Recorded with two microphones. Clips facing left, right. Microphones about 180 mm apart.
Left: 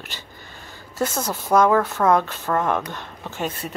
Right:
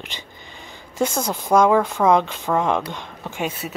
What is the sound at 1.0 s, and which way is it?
A woman's voice, 10° right (ahead or behind).